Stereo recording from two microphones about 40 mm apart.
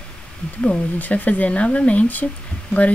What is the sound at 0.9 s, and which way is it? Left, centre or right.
Speech, left.